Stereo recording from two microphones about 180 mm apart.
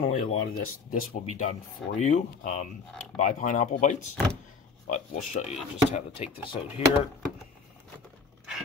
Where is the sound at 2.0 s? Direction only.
45° left (ahead or behind).